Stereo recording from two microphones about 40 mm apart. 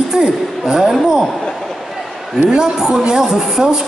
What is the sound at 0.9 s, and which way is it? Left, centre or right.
Speech, centre.